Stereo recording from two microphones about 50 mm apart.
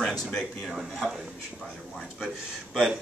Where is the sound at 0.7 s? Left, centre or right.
Centre.